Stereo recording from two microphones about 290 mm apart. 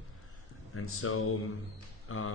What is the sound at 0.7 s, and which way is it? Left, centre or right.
Speech, left.